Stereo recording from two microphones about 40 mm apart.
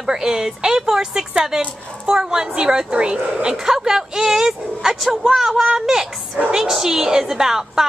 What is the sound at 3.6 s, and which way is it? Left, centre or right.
A woman's voice, centre.